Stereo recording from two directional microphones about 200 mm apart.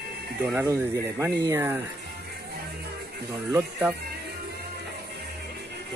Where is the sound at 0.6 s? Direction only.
10° right (ahead or behind).